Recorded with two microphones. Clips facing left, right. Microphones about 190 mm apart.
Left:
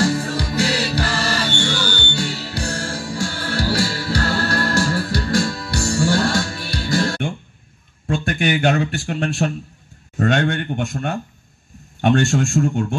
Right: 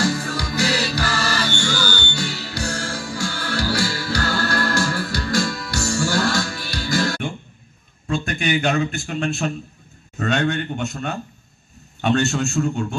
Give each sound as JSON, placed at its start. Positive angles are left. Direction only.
{"t": 0.0, "sound": "music", "side_deg": 30}
{"t": 8.1, "sound": "a sound", "side_deg": 50}
{"t": 9.4, "sound": "a man's voice", "side_deg": 45}